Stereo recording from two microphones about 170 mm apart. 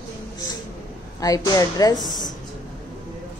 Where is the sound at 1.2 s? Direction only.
20° left (ahead or behind).